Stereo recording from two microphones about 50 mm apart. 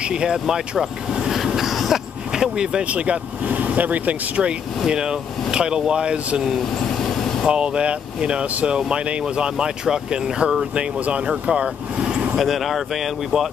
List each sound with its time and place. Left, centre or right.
0.0 s vehicle: centre
2.3 s speech: centre
2.9 s speech: right
7.0 s vehicle: centre
7.4 s speech: right
12.4 s speech: centre